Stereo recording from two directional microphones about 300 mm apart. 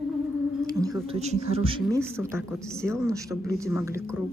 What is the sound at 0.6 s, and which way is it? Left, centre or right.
Speech, centre.